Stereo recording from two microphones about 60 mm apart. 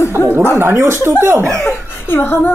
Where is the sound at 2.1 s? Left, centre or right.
Left.